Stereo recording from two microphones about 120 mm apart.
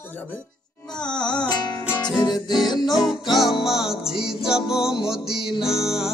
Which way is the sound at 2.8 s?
5° right (ahead or behind).